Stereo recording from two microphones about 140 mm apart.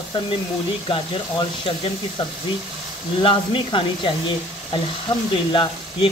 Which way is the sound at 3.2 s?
35° left (ahead or behind).